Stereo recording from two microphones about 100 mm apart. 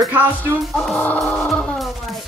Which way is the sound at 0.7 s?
5° left (ahead or behind).